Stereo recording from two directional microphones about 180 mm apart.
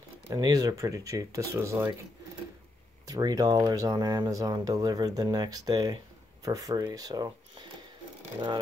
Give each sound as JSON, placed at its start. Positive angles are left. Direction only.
{"t": 0.3, "sound": "speech", "side_deg": -20}
{"t": 3.1, "sound": "speech", "side_deg": -20}